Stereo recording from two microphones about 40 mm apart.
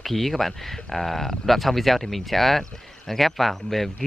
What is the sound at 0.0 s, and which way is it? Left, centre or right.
Speech, centre.